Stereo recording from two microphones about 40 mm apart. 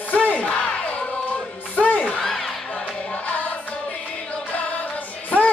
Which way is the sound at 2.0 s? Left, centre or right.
Centre.